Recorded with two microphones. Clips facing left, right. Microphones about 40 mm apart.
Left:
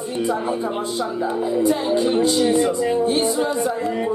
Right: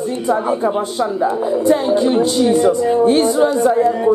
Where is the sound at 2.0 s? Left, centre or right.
Centre.